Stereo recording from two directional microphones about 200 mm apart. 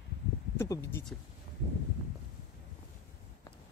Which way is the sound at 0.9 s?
10° left (ahead or behind).